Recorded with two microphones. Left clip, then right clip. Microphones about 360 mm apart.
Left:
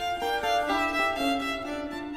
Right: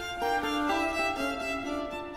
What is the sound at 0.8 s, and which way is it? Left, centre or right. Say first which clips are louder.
Violin: left 3 dB; left.